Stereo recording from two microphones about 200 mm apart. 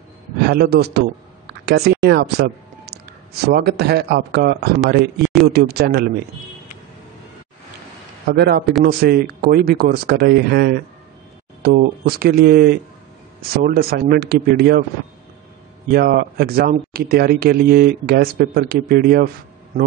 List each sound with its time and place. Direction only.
0.4 s speech: 55° right (ahead or behind)
5.2 s speech: centre (ahead or behind)
5.5 s speech: 55° right (ahead or behind)
8.3 s speech: 55° right (ahead or behind)
15.9 s speech: 50° right (ahead or behind)